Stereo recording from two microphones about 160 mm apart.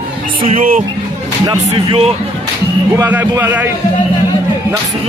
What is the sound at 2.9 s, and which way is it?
Speech, 15° right (ahead or behind).